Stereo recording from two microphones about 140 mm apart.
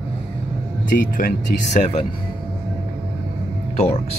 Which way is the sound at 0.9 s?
75° left (ahead or behind).